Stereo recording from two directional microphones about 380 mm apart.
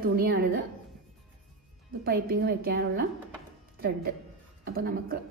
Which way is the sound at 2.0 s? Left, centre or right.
Right.